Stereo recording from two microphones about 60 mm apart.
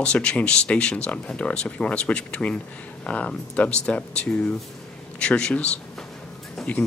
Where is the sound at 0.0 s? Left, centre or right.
Centre.